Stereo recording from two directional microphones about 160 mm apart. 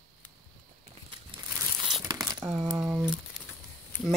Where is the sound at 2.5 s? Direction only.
Centre (ahead or behind).